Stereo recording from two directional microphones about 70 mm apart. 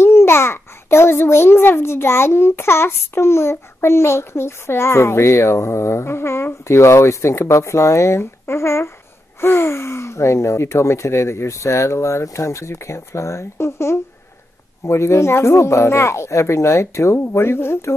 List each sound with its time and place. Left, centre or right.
0.0 s a child's voice: left